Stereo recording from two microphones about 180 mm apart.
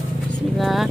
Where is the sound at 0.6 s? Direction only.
Centre (ahead or behind).